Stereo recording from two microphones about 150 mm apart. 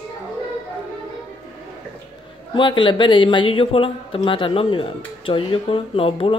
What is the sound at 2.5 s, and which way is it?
Speech, 35° left (ahead or behind).